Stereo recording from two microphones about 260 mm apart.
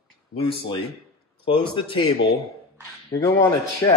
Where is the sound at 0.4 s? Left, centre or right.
Left.